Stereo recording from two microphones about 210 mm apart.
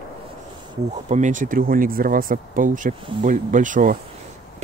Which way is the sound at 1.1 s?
35° right (ahead or behind).